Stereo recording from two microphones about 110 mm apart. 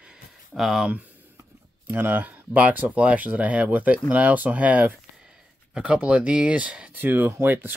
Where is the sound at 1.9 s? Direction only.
20° right (ahead or behind).